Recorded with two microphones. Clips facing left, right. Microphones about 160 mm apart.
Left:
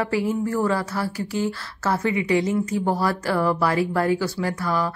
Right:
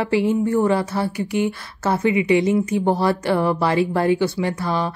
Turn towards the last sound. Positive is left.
turn(degrees=-25)  # may be behind; listen again after turning